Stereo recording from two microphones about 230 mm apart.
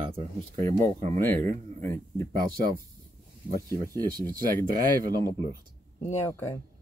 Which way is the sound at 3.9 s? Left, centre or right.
Centre.